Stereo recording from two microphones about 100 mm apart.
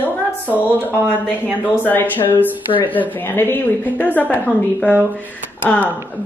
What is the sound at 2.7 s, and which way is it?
Speech, 55° left (ahead or behind).